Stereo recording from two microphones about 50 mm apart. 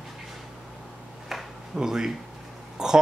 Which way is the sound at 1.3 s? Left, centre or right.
Centre.